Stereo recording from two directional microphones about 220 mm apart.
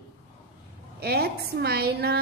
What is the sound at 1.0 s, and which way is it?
A woman's voice, 45° right (ahead or behind).